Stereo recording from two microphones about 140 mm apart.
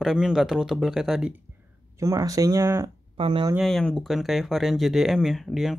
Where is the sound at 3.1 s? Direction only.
40° right (ahead or behind).